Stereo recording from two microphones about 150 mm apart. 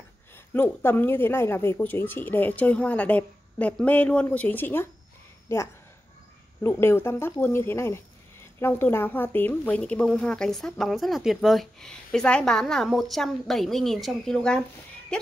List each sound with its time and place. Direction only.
0.5 s speech: 15° left (ahead or behind)